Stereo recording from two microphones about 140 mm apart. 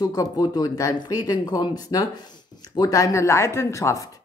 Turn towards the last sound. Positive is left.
turn(degrees=20)  # may be behind; listen again after turning